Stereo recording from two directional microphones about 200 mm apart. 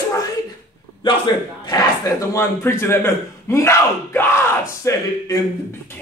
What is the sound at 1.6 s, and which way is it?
Speech, 15° left (ahead or behind).